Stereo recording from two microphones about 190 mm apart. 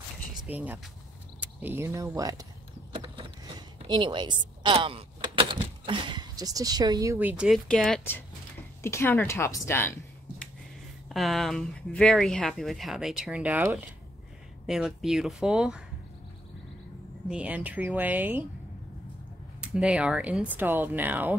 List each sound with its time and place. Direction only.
0.5 s speech: 10° right (ahead or behind)
2.9 s a sound: 25° right (ahead or behind); by 8.2 s 5° left (ahead or behind)
8.8 s a woman's voice: 15° left (ahead or behind)
11.1 s speech: centre (ahead or behind)
17.3 s speech: 5° right (ahead or behind)
19.6 s speech: 5° right (ahead or behind)